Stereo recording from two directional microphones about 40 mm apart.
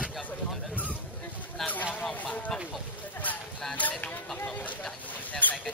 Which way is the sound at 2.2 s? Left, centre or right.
Left.